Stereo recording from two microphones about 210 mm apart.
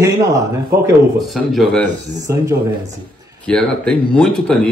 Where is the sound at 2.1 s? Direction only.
15° right (ahead or behind).